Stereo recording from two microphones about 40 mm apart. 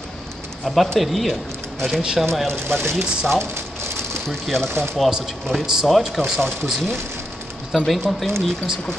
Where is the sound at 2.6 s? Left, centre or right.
Right.